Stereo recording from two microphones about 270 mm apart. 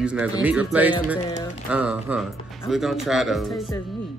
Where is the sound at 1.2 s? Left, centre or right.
Left.